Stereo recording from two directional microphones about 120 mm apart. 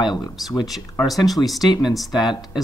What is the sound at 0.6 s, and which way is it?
Speech, centre (ahead or behind).